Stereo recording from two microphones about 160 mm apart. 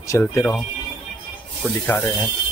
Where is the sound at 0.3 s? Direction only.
15° left (ahead or behind).